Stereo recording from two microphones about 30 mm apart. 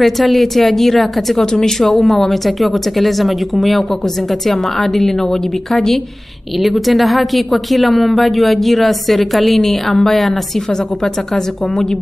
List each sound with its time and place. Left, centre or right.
0.0 s a woman's voice: centre
1.4 s a woman's voice: centre
4.7 s a woman's voice: centre
11.3 s a woman's voice: centre